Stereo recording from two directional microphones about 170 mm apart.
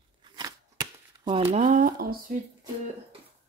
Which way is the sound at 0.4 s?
25° right (ahead or behind).